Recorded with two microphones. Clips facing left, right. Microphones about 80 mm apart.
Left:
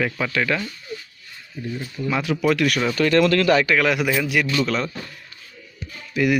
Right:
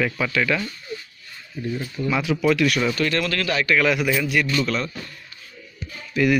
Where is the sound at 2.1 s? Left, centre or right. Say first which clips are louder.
Even; left.